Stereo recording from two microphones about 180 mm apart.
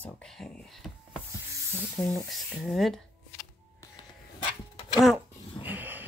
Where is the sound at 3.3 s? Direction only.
20° left (ahead or behind).